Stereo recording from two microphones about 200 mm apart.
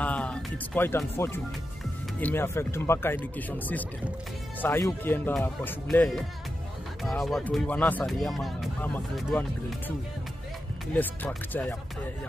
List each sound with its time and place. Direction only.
0.0 s speech: 5° left (ahead or behind)